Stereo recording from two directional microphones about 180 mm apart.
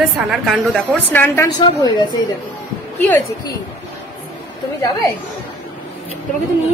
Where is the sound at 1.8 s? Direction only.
25° left (ahead or behind).